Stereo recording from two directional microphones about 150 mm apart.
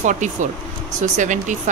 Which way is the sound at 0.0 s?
55° right (ahead or behind).